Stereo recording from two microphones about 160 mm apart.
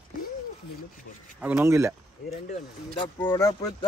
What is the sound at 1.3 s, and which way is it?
Speech, 10° right (ahead or behind).